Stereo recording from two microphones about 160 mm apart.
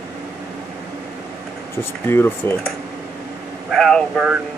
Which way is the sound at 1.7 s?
15° left (ahead or behind).